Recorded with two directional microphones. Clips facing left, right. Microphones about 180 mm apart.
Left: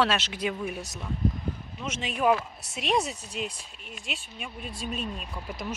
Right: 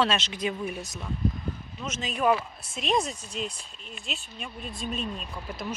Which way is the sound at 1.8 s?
10° left (ahead or behind).